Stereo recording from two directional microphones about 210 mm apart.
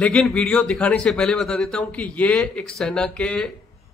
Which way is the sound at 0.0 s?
5° left (ahead or behind).